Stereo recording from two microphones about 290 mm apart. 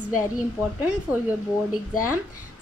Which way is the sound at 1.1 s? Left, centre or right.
Centre.